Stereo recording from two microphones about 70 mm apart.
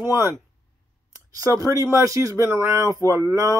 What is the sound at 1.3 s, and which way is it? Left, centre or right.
A woman's voice, right.